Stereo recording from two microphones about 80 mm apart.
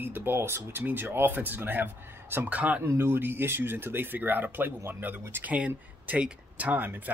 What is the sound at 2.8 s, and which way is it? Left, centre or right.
Speech, right.